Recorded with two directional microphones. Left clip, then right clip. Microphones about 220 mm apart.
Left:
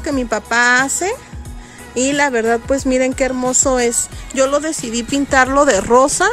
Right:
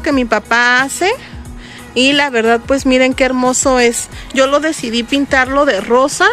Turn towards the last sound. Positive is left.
turn(degrees=25)  # may be behind; listen again after turning